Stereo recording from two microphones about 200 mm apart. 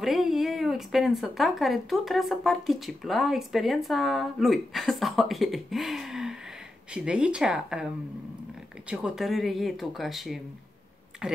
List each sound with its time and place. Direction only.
0.0 s speech: centre (ahead or behind)